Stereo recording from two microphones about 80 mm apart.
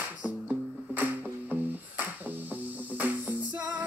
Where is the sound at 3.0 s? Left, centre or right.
Right.